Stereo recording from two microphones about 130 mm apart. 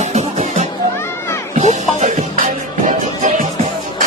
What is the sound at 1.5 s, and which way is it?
Music, 75° right (ahead or behind).